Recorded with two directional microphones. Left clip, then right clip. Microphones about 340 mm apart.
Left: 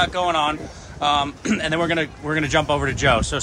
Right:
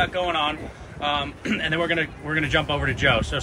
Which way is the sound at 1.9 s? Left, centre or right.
Left.